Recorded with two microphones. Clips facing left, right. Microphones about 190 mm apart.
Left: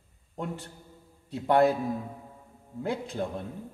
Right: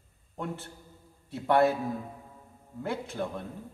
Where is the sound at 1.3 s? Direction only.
15° left (ahead or behind).